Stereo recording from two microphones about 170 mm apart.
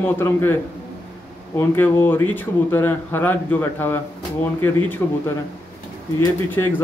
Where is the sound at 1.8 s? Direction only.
10° left (ahead or behind).